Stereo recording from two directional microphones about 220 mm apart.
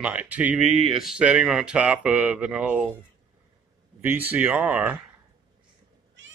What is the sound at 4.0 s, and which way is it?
Speech, 10° right (ahead or behind).